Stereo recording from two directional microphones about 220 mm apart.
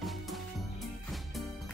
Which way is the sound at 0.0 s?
Centre (ahead or behind).